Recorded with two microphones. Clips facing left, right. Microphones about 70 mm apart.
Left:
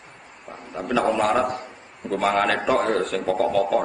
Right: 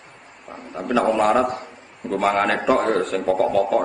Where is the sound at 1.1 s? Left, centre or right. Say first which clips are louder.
Right 3 dB; centre.